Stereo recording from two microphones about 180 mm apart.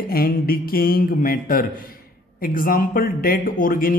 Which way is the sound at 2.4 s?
50° left (ahead or behind).